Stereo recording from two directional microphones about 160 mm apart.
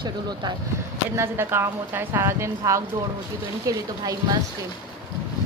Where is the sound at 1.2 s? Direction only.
15° right (ahead or behind).